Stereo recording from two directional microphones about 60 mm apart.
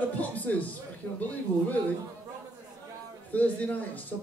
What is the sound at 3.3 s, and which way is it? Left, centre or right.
Speech, left.